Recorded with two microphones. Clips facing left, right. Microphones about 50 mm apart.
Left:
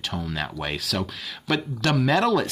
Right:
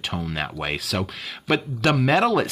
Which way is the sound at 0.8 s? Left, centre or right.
Centre.